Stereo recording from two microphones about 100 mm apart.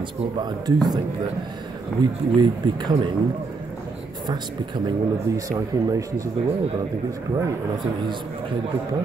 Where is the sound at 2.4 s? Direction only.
45° right (ahead or behind).